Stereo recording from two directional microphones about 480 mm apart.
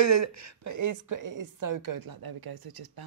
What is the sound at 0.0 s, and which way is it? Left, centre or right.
A woman's voice, right.